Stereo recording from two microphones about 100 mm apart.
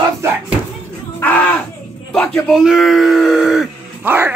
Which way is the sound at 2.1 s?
10° left (ahead or behind).